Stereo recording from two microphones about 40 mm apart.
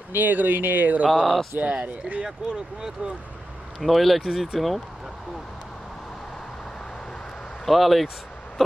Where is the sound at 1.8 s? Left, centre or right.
Right.